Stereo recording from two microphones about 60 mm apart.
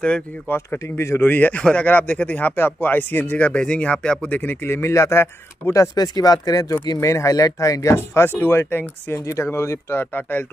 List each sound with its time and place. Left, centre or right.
0.5 s speech: left
1.2 s speech: left
3.3 s speech: centre
4.4 s speech: left
5.7 s speech: left
7.9 s speech: left
9.4 s speech: left